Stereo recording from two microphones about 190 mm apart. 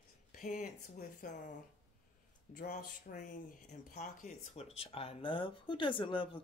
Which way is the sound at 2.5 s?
45° left (ahead or behind).